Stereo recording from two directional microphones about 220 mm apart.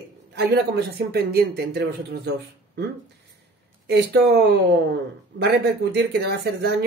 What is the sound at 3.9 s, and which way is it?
Speech, 45° right (ahead or behind).